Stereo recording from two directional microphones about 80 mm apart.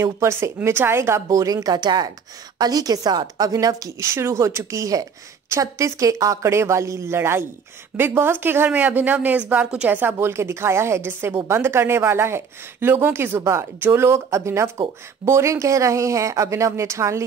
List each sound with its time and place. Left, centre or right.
0.0 s a woman's voice: right
1.3 s a woman's voice: right
10.1 s a woman's voice: right